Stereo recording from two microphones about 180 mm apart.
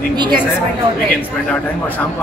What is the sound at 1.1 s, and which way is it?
Speech, 5° left (ahead or behind).